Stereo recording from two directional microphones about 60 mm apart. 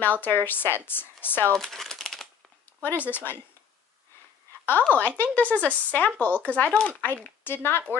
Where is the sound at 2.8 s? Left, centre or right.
Left.